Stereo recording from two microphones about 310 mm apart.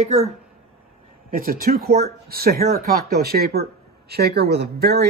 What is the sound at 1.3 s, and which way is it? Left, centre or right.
Speech, right.